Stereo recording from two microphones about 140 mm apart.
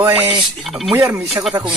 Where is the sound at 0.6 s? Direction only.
Centre (ahead or behind).